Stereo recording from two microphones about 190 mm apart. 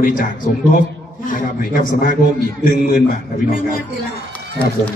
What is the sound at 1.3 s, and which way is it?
A man's voice, 45° left (ahead or behind).